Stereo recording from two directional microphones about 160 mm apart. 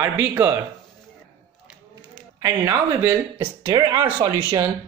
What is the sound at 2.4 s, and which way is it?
Speech, 20° right (ahead or behind).